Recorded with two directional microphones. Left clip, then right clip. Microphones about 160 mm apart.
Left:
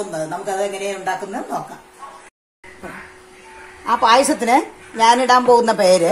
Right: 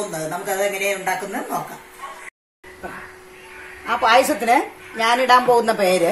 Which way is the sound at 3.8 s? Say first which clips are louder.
Left 2 dB; 90° left.